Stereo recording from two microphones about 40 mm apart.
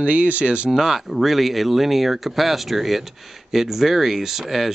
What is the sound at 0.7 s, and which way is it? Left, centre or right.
Speech, centre.